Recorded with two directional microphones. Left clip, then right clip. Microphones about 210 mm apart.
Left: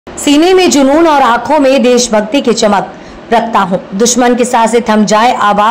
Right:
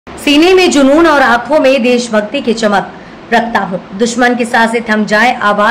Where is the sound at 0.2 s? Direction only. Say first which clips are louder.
Even; 15° left (ahead or behind).